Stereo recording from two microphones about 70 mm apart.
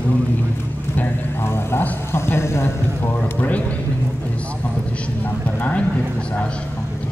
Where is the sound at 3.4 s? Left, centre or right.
Left.